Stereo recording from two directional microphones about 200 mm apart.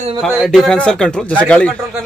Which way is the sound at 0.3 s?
Centre (ahead or behind).